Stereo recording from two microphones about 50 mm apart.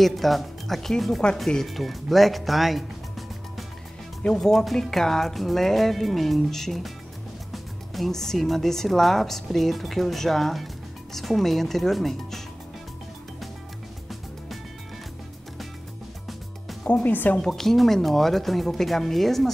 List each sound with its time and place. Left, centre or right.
0.0 s speech: centre
4.2 s speech: centre
16.9 s speech: left
17.4 s speech: centre